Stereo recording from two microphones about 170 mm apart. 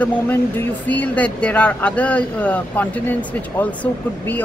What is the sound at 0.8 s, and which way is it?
Speech, 10° left (ahead or behind).